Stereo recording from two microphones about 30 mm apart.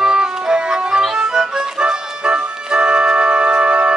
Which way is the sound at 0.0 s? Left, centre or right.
Right.